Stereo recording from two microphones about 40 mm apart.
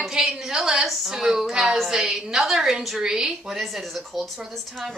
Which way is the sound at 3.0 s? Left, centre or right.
Centre.